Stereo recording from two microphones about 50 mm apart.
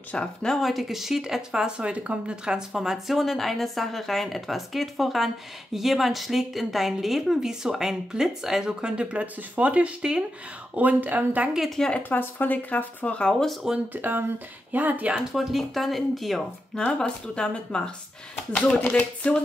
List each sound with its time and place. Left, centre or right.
0.1 s speech: centre
0.6 s speech: centre; by 10.2 s right
10.8 s speech: right
11.6 s speech: centre
12.1 s speech: left
13.3 s speech: centre
13.9 s speech: right
15.3 s speech: centre
16.7 s speech: centre
18.8 s speech: left